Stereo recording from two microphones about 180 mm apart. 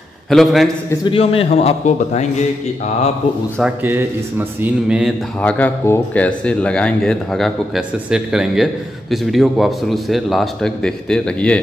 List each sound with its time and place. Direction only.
0.3 s speech: centre (ahead or behind)
1.0 s a man's voice: 30° left (ahead or behind)
3.8 s a man's voice: 10° right (ahead or behind)
5.4 s speech: 10° left (ahead or behind)